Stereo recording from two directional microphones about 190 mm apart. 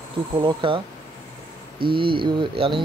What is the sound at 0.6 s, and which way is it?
Speech, 25° right (ahead or behind).